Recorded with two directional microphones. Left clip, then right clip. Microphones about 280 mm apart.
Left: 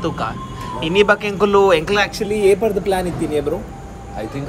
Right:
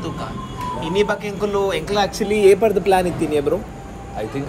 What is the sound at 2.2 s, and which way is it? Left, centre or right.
Speech, right.